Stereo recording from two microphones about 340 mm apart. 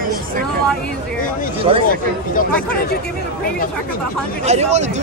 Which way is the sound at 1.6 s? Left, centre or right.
Centre.